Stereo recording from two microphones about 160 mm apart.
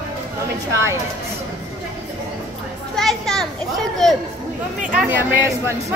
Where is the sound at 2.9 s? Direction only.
Centre (ahead or behind).